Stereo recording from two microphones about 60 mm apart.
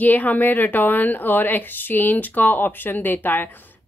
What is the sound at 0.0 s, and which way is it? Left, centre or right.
A woman's voice, left.